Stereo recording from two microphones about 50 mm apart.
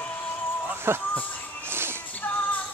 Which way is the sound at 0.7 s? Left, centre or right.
Right.